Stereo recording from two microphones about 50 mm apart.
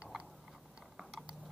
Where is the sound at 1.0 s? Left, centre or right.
Centre.